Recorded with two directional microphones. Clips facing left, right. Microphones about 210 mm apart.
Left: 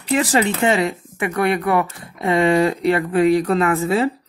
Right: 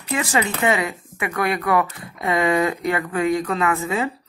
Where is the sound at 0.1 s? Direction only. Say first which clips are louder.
Left 5 dB; 35° left (ahead or behind).